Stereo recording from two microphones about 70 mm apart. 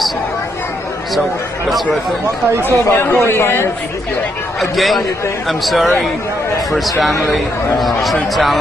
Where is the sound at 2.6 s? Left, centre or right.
Left.